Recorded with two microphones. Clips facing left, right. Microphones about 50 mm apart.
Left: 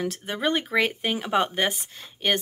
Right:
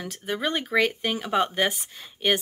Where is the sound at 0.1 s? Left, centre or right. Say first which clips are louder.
Left 2 dB; centre.